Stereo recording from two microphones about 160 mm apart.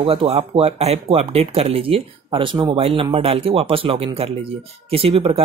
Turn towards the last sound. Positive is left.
turn(degrees=-35)  # may be behind; listen again after turning